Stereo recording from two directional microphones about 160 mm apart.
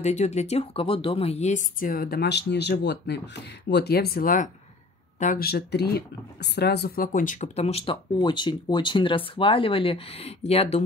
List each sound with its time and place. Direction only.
0.0 s speech: 45° left (ahead or behind)